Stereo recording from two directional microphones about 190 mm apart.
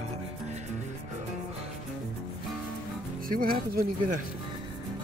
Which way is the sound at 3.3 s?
50° right (ahead or behind).